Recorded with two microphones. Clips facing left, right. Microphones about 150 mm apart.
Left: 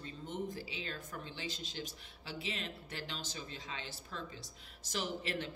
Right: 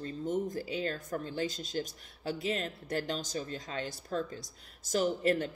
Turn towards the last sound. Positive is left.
turn(degrees=-45)  # may be behind; listen again after turning